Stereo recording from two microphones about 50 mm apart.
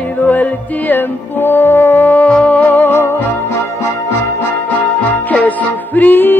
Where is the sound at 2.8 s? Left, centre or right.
Left.